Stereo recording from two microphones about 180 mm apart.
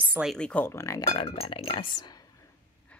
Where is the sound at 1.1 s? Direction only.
30° left (ahead or behind).